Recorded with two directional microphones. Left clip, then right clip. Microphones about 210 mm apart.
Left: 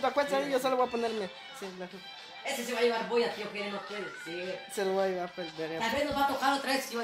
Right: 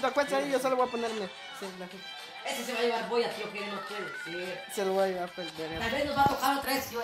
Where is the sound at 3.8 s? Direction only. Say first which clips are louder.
Right 2 dB; 35° right (ahead or behind).